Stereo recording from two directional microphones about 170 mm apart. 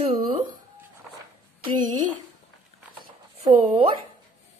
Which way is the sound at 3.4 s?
35° right (ahead or behind).